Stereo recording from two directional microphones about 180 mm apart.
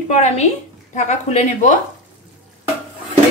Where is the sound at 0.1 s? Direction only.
40° left (ahead or behind).